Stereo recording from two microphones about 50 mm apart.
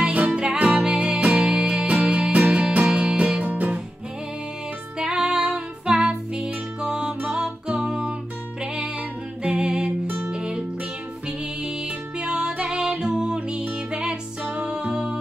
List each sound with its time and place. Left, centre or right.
0.0 s music: right
4.9 s music: centre
9.4 s music: centre
12.2 s music: centre